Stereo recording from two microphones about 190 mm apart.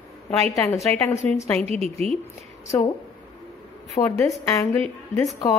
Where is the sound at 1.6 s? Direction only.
35° right (ahead or behind).